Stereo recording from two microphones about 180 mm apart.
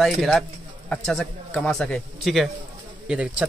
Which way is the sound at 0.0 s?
Centre (ahead or behind).